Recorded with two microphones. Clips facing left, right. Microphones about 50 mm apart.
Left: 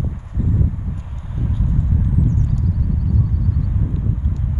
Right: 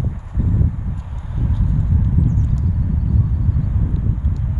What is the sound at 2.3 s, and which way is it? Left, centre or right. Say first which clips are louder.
Horse: even; right.